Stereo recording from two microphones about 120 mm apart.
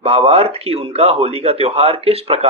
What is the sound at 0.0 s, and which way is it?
A man's voice, 55° right (ahead or behind).